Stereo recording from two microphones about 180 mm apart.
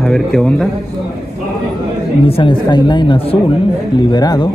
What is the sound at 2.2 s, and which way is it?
Speech, 30° left (ahead or behind).